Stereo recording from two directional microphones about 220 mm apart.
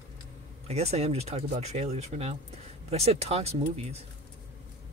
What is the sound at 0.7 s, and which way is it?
Speech, 30° right (ahead or behind).